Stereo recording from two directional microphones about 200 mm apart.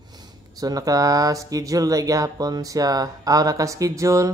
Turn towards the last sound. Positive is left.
turn(degrees=-15)  # may be behind; listen again after turning